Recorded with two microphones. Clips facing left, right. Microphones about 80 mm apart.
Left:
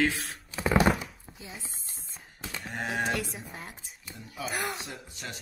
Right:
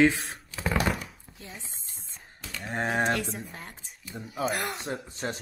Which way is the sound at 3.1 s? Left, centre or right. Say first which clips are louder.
Right 3 dB; centre.